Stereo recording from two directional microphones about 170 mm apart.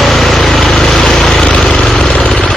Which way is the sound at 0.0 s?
Centre (ahead or behind).